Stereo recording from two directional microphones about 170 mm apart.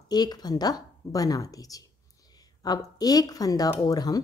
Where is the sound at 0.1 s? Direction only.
25° left (ahead or behind).